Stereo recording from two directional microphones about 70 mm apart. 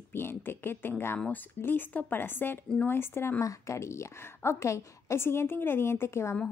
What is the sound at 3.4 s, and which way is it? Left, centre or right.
A woman's voice, left.